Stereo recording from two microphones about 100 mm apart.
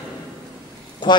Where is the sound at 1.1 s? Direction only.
45° left (ahead or behind).